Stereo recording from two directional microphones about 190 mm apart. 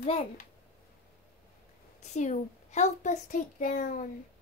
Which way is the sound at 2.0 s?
40° left (ahead or behind).